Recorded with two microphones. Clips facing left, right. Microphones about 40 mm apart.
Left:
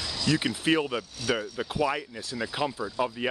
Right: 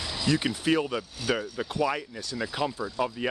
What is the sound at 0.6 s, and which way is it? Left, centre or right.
Speech, centre.